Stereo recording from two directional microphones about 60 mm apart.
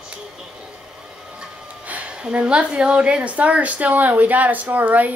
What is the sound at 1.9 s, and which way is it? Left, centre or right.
A woman's voice, centre.